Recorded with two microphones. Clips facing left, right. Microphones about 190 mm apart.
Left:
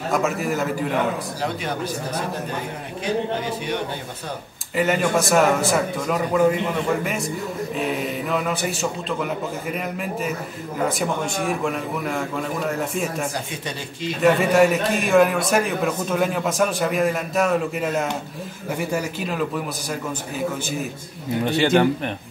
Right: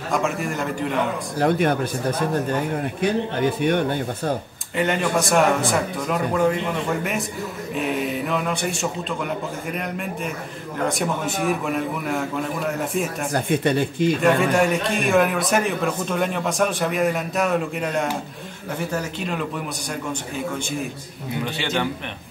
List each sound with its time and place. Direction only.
0.1 s a man's voice: 5° left (ahead or behind)
1.4 s speech: 55° right (ahead or behind)
3.0 s speech: 55° right (ahead or behind)
4.7 s a man's voice: 5° left (ahead or behind)
7.7 s a man's voice: centre (ahead or behind)
13.3 s speech: 55° right (ahead or behind)
14.2 s a man's voice: centre (ahead or behind)
21.5 s speech: 40° left (ahead or behind)